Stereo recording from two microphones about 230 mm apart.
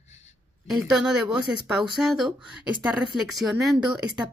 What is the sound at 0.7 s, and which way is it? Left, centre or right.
Speech, centre.